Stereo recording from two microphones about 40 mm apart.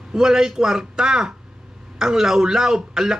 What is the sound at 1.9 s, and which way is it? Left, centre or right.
A man's voice, centre.